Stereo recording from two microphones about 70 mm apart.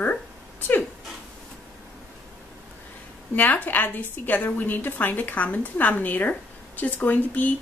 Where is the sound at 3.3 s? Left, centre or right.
Left.